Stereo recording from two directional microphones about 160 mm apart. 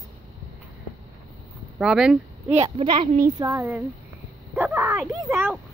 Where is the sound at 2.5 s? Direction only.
40° right (ahead or behind).